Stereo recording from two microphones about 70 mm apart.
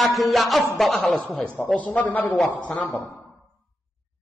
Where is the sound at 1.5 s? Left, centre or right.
Left.